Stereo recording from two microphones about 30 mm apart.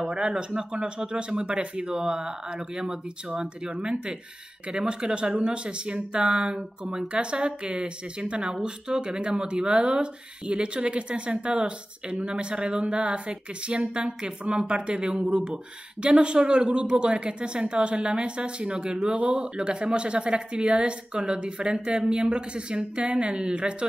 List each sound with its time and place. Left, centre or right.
0.1 s speech: right
19.1 s speech: right
19.5 s speech: right